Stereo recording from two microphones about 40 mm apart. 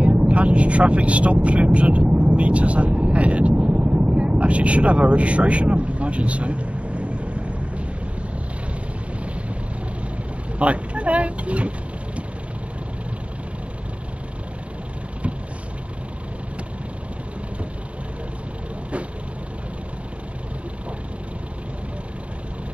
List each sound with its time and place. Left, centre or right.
0.0 s speech: right
10.6 s speech: right